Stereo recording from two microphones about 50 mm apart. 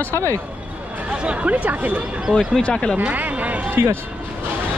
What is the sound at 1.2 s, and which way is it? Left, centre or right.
Speech, right.